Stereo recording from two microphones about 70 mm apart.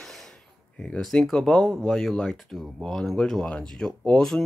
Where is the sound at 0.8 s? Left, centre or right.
Centre.